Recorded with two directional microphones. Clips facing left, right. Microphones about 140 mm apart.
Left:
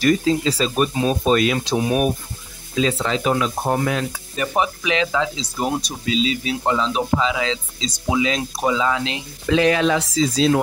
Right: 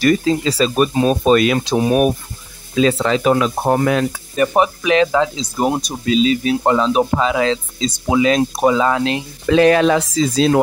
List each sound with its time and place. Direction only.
0.0 s speech: 70° right (ahead or behind)
4.4 s speech: 45° right (ahead or behind)